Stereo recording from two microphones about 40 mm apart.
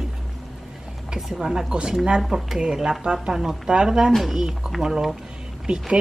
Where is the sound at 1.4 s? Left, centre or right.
Centre.